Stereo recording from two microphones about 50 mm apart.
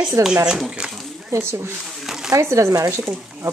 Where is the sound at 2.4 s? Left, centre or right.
Right.